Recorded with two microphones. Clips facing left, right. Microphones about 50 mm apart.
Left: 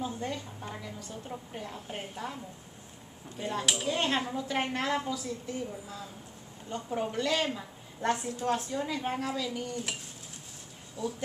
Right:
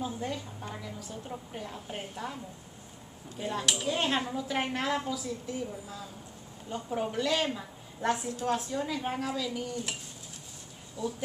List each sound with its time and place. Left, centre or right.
0.0 s a woman's voice: centre
3.3 s a woman's voice: centre
11.0 s speech: left